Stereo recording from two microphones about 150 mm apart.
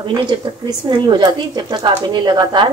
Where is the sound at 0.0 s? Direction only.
30° right (ahead or behind).